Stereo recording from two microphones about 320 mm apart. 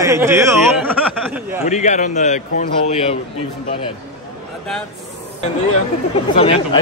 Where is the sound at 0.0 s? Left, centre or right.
Centre.